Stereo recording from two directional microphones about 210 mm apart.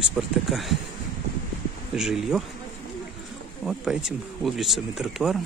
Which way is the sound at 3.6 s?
Centre (ahead or behind).